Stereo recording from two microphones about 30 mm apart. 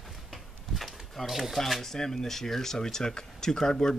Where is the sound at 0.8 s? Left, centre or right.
Centre.